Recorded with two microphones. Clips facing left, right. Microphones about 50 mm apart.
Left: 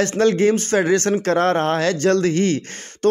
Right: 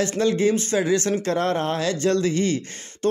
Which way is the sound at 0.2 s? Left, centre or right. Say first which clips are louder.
Left 4 dB; left.